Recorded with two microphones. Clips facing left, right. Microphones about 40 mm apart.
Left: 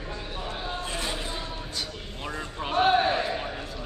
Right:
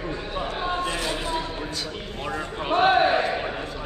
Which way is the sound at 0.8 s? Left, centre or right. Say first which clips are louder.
Right 5 dB; right.